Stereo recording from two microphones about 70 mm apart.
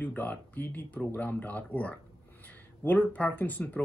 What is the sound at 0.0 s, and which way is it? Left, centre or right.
Speech, left.